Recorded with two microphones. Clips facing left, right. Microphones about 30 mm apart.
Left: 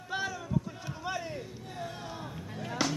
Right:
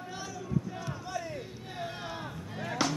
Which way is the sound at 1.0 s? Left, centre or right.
Left.